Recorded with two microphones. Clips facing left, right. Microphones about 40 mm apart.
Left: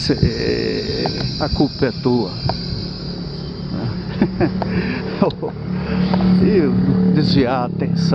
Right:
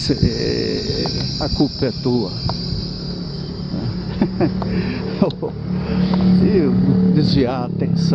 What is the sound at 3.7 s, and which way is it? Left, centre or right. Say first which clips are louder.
Speech: left 1 dB; centre.